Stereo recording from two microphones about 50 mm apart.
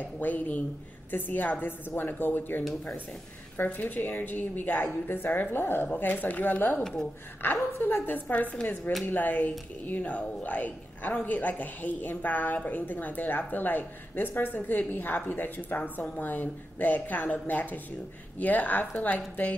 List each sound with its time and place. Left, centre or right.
0.0 s a woman's voice: left
6.8 s a woman's voice: centre
7.4 s a woman's voice: left
7.9 s a woman's voice: left